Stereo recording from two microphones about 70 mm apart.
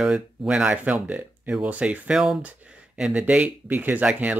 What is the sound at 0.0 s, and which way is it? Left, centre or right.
Speech, centre.